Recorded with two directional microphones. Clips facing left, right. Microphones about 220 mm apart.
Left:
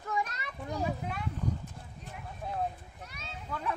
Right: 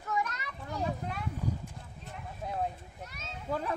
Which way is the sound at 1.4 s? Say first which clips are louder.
Left 1 dB; 10° right (ahead or behind).